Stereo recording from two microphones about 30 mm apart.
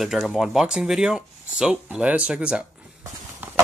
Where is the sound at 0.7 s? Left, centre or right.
Right.